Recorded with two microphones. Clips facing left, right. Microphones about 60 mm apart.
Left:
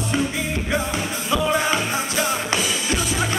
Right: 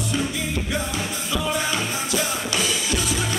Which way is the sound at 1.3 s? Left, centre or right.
Left.